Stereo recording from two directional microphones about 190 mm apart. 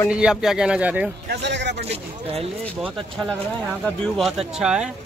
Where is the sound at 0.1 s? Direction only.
5° right (ahead or behind).